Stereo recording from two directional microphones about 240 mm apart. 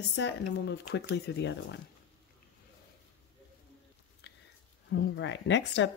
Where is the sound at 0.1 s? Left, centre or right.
Left.